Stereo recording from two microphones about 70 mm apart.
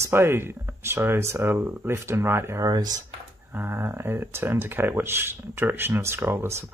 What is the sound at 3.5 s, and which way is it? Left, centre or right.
Speech, right.